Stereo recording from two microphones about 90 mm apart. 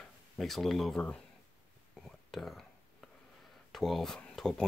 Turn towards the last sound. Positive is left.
turn(degrees=5)  # may be behind; listen again after turning